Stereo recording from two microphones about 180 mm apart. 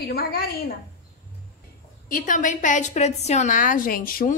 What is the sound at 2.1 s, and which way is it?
A woman's voice, 50° left (ahead or behind).